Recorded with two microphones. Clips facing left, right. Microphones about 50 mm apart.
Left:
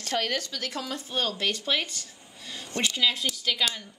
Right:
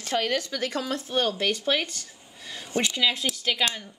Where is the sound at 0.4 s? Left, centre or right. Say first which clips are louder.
Right 5 dB; right.